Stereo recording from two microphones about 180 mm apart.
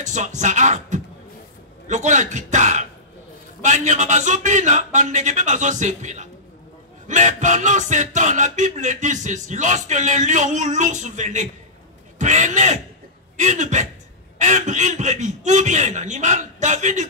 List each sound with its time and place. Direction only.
0.0 s a man's voice: 40° right (ahead or behind)
7.1 s music: 40° right (ahead or behind)
13.4 s a man's voice: 40° right (ahead or behind)